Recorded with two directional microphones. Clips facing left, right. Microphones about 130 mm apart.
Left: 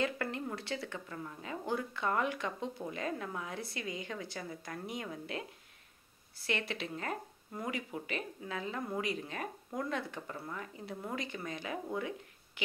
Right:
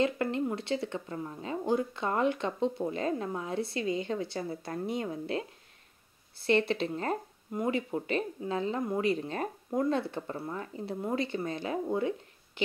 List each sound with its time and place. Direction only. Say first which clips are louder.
0.0 s speech: right 7 dB; 25° right (ahead or behind)